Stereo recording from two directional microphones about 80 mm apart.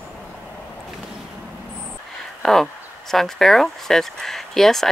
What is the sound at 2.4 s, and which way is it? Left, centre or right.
Speech, centre.